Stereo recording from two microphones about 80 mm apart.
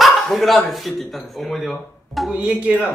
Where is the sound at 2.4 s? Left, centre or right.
Centre.